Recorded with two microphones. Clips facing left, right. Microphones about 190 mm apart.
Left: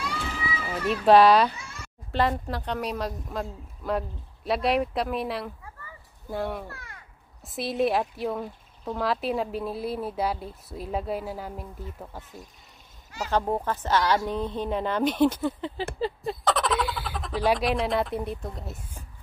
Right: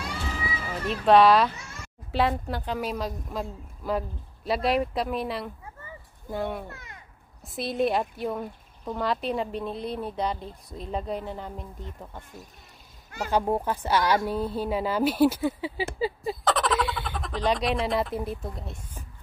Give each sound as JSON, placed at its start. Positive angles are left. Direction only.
{"t": 0.8, "sound": "speech", "side_deg": 0}
{"t": 6.7, "sound": "a sound", "side_deg": -20}
{"t": 7.4, "sound": "speech", "side_deg": 0}
{"t": 13.3, "sound": "speech", "side_deg": -10}